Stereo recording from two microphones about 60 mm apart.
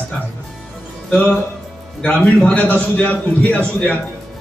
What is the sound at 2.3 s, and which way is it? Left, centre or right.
A man's voice, left.